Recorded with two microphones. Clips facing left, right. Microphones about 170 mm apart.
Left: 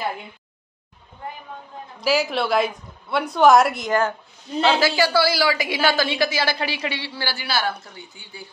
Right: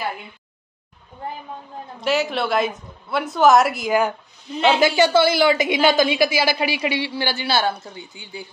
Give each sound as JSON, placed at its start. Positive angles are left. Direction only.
{"t": 2.0, "sound": "speech", "side_deg": 0}
{"t": 4.6, "sound": "a woman's voice", "side_deg": -20}